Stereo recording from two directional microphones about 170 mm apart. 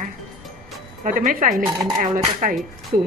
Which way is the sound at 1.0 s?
50° right (ahead or behind).